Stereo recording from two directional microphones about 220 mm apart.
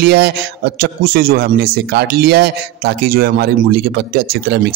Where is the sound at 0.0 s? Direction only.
45° right (ahead or behind).